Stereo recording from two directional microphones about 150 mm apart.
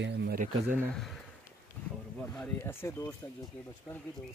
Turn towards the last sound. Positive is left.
turn(degrees=15)  # may be behind; listen again after turning